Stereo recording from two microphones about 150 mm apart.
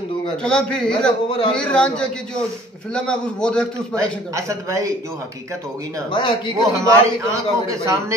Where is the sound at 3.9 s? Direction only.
20° right (ahead or behind).